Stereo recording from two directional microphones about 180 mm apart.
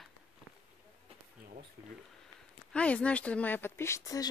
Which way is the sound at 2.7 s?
5° left (ahead or behind).